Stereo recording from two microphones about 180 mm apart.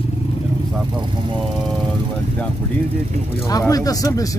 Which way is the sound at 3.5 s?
20° left (ahead or behind).